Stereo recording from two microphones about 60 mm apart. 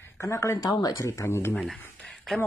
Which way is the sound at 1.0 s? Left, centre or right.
Left.